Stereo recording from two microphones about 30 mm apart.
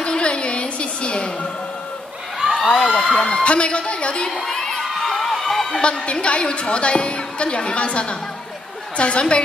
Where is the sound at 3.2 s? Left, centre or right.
Left.